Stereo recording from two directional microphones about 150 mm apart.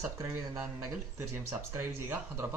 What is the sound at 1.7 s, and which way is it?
Speech, 15° right (ahead or behind).